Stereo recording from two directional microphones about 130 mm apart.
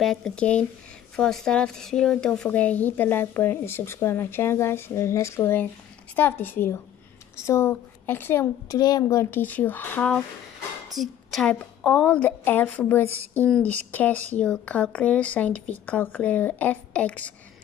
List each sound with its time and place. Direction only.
0.0 s speech: 5° left (ahead or behind)
8.7 s speech: 30° left (ahead or behind); by 17.3 s 10° left (ahead or behind)